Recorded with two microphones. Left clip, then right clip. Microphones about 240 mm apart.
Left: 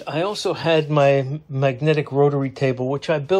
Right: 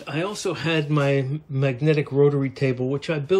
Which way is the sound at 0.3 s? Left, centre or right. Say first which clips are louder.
Left 7 dB; centre.